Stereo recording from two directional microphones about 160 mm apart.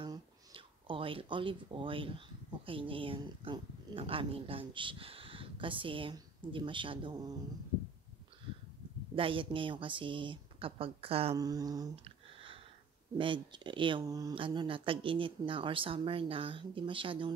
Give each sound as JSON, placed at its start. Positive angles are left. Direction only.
{"t": 0.0, "sound": "speech", "side_deg": -30}
{"t": 9.1, "sound": "speech", "side_deg": -35}
{"t": 11.3, "sound": "speech", "side_deg": -25}
{"t": 11.9, "sound": "a sound", "side_deg": -35}
{"t": 13.2, "sound": "speech", "side_deg": -30}